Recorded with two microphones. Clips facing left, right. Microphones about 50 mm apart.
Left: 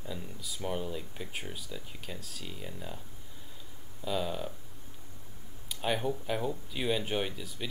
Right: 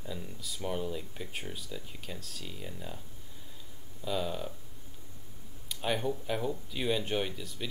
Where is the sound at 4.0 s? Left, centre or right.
Centre.